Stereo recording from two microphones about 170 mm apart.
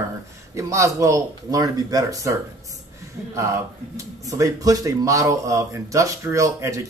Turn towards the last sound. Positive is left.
turn(degrees=-20)  # may be behind; listen again after turning